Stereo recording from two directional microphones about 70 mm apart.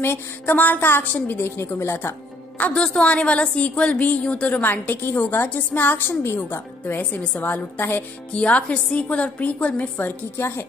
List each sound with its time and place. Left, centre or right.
0.0 s a woman's voice: left
2.6 s a woman's voice: centre
4.6 s a woman's voice: left
6.8 s a woman's voice: left